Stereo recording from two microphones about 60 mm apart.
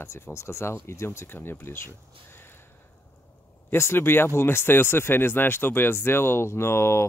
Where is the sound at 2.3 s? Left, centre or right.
Left.